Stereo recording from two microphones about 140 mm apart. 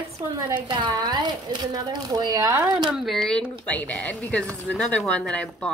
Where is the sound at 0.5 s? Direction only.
35° right (ahead or behind).